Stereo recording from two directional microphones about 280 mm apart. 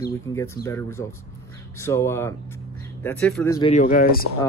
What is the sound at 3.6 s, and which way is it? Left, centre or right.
Speech, left.